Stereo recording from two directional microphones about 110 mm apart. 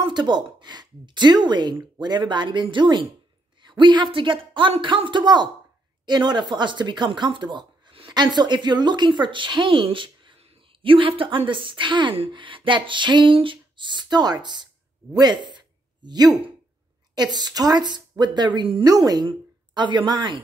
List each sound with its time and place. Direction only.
0.0 s a woman's voice: 40° right (ahead or behind)
18.9 s a woman's voice: 35° right (ahead or behind)